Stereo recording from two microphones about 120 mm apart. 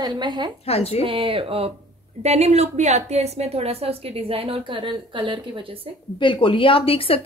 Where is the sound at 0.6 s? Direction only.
60° left (ahead or behind).